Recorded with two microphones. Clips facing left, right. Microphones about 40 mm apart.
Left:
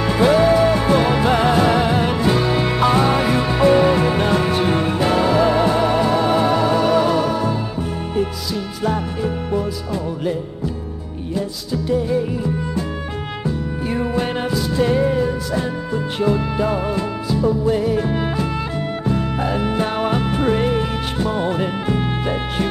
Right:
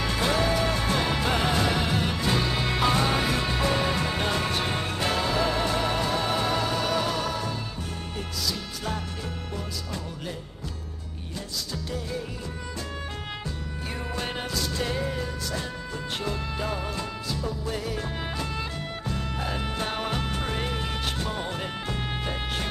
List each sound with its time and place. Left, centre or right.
0.0 s music: centre
8.8 s music: centre
11.3 s music: centre